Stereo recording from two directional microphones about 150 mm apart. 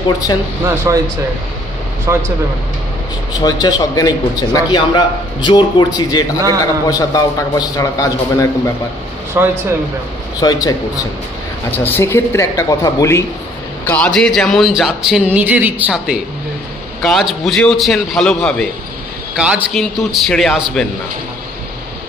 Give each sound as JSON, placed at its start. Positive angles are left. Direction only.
{"t": 0.9, "sound": "speech", "side_deg": -15}
{"t": 2.1, "sound": "speech", "side_deg": -15}
{"t": 3.3, "sound": "a man's voice", "side_deg": 25}
{"t": 9.4, "sound": "speech", "side_deg": -15}
{"t": 10.4, "sound": "a man's voice", "side_deg": 25}
{"t": 13.8, "sound": "speech", "side_deg": 10}
{"t": 19.3, "sound": "speech", "side_deg": -5}